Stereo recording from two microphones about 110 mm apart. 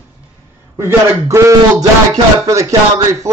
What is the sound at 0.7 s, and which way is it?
A man's voice, 25° right (ahead or behind).